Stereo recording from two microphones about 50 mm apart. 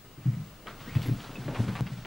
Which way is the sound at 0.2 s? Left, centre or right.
Centre.